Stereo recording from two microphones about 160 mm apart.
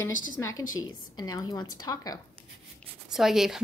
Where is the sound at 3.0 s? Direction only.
Centre (ahead or behind).